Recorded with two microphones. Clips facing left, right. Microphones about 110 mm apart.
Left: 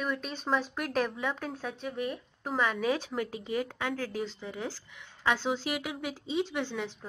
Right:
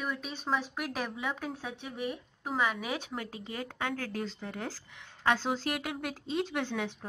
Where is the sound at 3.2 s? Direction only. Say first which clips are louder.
Left 7 dB; 30° right (ahead or behind).